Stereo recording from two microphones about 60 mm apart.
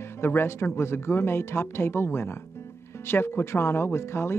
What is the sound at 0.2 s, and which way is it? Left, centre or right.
Speech, left.